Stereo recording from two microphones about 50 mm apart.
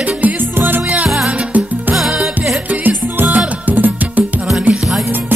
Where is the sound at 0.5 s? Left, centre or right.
Right.